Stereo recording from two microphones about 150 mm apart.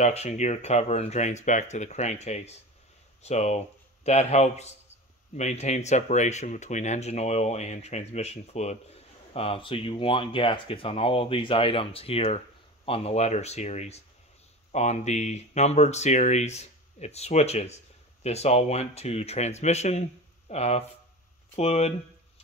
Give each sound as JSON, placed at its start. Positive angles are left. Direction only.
{"t": 0.0, "sound": "speech", "side_deg": 45}